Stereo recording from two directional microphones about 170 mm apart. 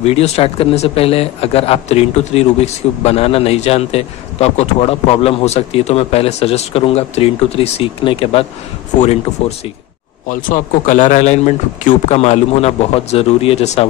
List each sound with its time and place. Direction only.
0.0 s speech: 35° left (ahead or behind)
10.2 s speech: 50° left (ahead or behind)